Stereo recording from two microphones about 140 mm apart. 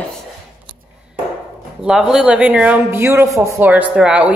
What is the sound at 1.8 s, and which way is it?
A woman's voice, 5° right (ahead or behind).